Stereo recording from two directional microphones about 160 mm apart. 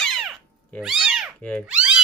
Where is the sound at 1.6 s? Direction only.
5° right (ahead or behind).